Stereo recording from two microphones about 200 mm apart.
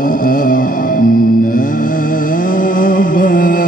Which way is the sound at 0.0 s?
40° left (ahead or behind).